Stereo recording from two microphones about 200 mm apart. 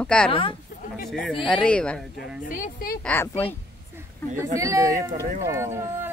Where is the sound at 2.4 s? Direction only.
40° left (ahead or behind).